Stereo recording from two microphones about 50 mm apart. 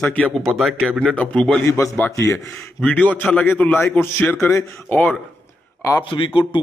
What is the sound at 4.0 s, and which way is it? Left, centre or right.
Speech, left.